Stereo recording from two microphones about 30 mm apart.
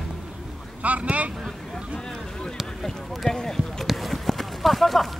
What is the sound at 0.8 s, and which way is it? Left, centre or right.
Boat, right.